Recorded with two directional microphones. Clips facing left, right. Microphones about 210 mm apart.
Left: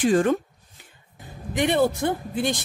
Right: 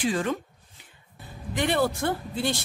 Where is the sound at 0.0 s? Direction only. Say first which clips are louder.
Left 7 dB; 50° left (ahead or behind).